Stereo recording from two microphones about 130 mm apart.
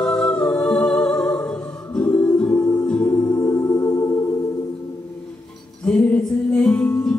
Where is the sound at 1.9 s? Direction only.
10° left (ahead or behind).